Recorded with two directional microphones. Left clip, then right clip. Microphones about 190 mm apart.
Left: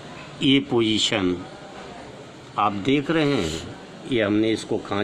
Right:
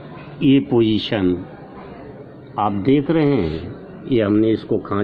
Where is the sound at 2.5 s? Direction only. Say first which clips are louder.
Right 4 dB; 5° left (ahead or behind).